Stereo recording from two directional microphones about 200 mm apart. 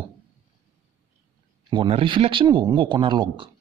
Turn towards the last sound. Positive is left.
turn(degrees=-25)  # may be behind; listen again after turning